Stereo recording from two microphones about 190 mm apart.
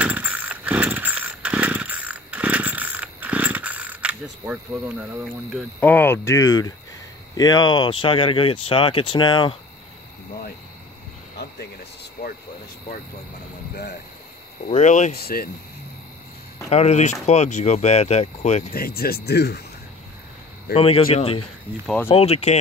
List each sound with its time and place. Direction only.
0.0 s vehicle: 10° right (ahead or behind)
5.8 s speech: 10° left (ahead or behind); by 9.6 s 25° left (ahead or behind)
11.3 s a sound: 60° left (ahead or behind)
14.7 s speech: 40° left (ahead or behind)
16.6 s speech: 35° left (ahead or behind)
18.7 s speech: 55° left (ahead or behind)
20.7 s speech: 30° left (ahead or behind)
21.8 s speech: 10° left (ahead or behind)
22.1 s speech: 35° left (ahead or behind)